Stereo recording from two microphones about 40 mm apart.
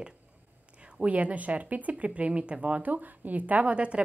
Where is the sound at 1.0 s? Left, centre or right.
Right.